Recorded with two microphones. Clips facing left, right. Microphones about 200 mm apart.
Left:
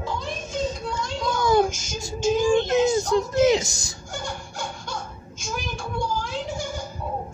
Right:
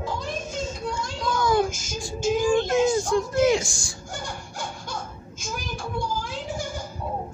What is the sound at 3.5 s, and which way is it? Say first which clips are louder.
Speech: left 1 dB; 20° left (ahead or behind).